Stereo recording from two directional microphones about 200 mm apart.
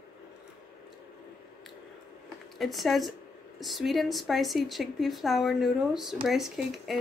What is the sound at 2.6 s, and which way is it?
Speech, centre (ahead or behind).